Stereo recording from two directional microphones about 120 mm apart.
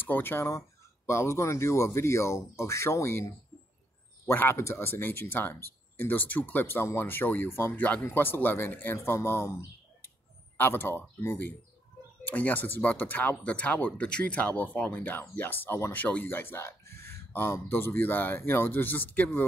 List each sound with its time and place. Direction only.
0.0 s speech: 15° left (ahead or behind)
4.3 s speech: 20° left (ahead or behind)